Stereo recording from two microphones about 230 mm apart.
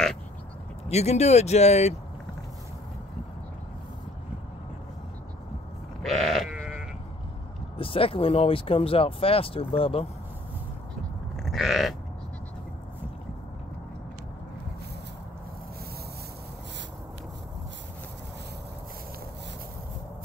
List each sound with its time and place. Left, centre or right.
0.8 s speech: left
6.0 s sheep: centre
7.7 s speech: left
11.3 s grunt: centre